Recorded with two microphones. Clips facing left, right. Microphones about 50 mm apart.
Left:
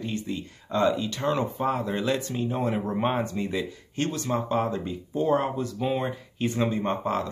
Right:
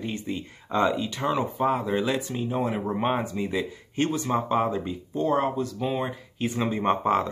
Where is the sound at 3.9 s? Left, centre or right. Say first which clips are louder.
Right 3 dB; centre.